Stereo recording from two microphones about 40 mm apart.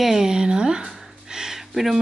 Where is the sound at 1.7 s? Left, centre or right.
Centre.